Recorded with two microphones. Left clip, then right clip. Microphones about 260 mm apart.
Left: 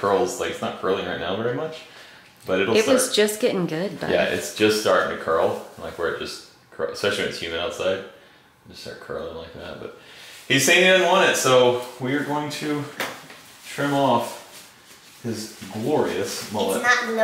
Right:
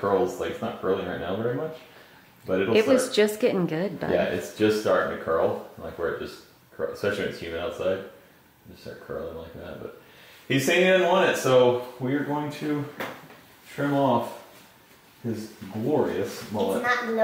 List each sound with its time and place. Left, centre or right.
0.0 s speech: centre
10.5 s speech: centre